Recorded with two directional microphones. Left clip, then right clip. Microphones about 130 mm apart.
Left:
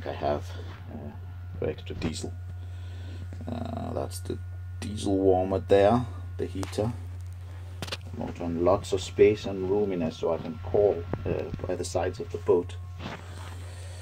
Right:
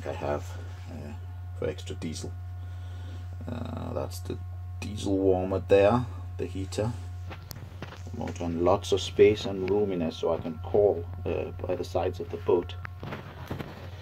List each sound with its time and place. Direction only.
0.0 s a sound: 15° left (ahead or behind)
1.7 s speech: 15° left (ahead or behind)
3.4 s speech: 15° left (ahead or behind)
8.4 s speech: 5° right (ahead or behind)